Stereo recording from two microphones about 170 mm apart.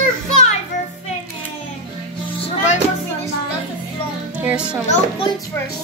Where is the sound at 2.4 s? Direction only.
45° left (ahead or behind).